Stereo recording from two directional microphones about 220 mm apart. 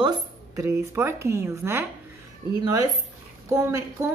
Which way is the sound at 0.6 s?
10° right (ahead or behind).